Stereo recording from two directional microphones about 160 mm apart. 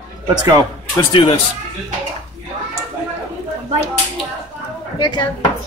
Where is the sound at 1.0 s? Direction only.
30° left (ahead or behind).